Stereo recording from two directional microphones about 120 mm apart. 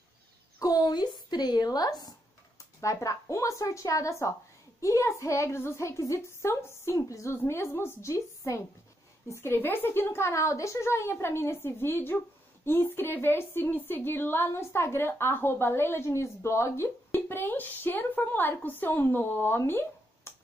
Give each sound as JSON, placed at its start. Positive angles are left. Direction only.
{"t": 0.6, "sound": "a woman's voice", "side_deg": 30}